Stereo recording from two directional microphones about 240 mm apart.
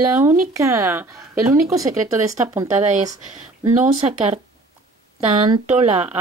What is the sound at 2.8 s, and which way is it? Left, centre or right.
Speech, right.